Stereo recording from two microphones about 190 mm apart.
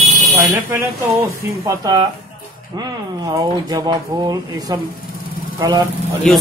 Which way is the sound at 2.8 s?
20° right (ahead or behind).